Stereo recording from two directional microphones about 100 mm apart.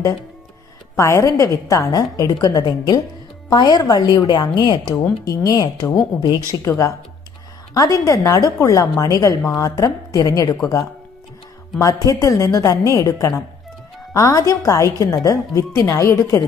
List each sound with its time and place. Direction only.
0.9 s a woman's voice: 30° left (ahead or behind); by 5.0 s 45° left (ahead or behind)
5.2 s a woman's voice: 35° left (ahead or behind)
6.6 s a woman's voice: 30° left (ahead or behind)
12.0 s a woman's voice: 35° left (ahead or behind)